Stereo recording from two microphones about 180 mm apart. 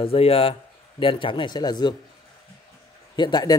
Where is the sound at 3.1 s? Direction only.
25° left (ahead or behind).